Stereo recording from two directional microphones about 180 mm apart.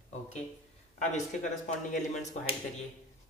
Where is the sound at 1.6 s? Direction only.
40° left (ahead or behind).